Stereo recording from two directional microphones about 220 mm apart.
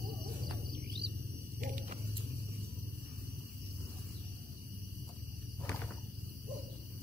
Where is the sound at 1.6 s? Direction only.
35° right (ahead or behind).